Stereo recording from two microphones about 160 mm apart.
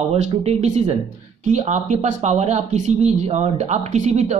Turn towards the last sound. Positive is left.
turn(degrees=-45)  # may be behind; listen again after turning